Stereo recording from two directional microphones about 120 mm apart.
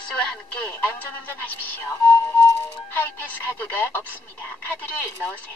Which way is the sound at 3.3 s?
15° left (ahead or behind).